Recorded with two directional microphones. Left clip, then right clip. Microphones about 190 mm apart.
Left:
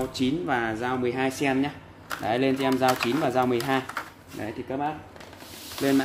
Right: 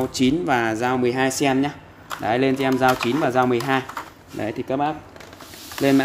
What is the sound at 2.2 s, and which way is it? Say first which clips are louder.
Speech: right 4 dB; 25° right (ahead or behind).